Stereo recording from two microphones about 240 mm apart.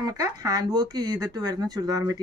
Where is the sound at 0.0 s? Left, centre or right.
Centre.